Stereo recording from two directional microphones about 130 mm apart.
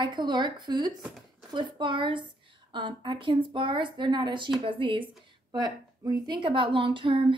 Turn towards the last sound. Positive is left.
turn(degrees=-40)  # may be behind; listen again after turning